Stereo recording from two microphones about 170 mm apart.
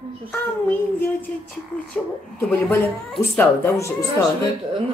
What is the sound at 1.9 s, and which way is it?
Speech, 10° left (ahead or behind).